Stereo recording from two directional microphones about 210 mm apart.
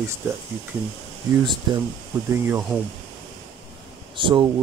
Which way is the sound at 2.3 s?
10° right (ahead or behind).